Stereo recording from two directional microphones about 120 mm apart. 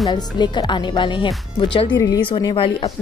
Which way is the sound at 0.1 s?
40° left (ahead or behind).